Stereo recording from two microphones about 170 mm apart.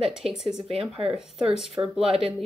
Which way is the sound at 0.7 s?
35° right (ahead or behind).